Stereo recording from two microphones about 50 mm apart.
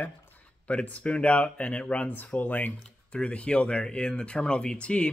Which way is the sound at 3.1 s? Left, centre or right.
Left.